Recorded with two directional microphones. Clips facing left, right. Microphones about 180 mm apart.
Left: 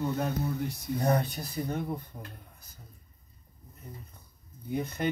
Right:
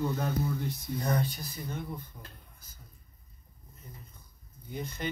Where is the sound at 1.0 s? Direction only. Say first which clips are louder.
Left 4 dB; 65° left (ahead or behind).